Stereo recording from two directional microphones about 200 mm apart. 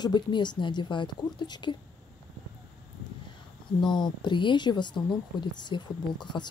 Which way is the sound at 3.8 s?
20° left (ahead or behind).